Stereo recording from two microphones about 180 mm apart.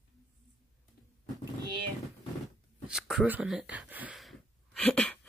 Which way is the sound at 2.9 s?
5° right (ahead or behind).